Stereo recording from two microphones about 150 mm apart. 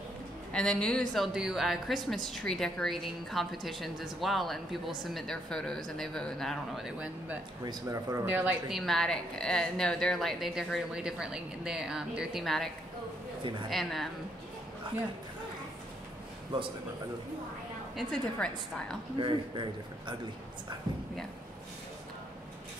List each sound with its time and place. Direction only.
0.5 s a woman's voice: 5° left (ahead or behind)
7.6 s speech: 25° right (ahead or behind)
8.3 s a woman's voice: 5° right (ahead or behind)
13.7 s a woman's voice: centre (ahead or behind)
17.9 s a woman's voice: 5° left (ahead or behind)
19.1 s speech: 35° right (ahead or behind)